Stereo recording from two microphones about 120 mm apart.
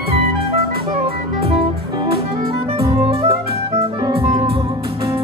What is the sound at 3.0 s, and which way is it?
Music, 55° right (ahead or behind).